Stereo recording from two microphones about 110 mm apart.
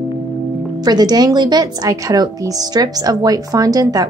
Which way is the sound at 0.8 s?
40° right (ahead or behind).